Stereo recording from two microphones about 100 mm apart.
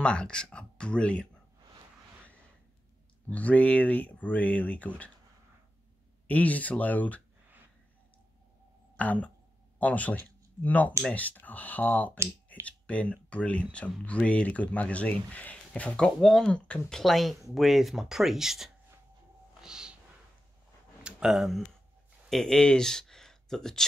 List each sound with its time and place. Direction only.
0.0 s speech: 10° left (ahead or behind)
3.3 s speech: 15° left (ahead or behind)
6.2 s speech: 15° left (ahead or behind)
8.9 s speech: 15° left (ahead or behind); by 18.7 s 5° right (ahead or behind)
19.6 s owl: 5° right (ahead or behind)
21.0 s speech: 5° right (ahead or behind)